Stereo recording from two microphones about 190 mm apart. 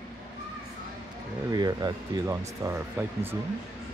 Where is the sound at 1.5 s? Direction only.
20° right (ahead or behind).